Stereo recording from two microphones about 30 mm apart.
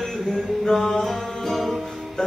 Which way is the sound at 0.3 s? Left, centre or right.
Centre.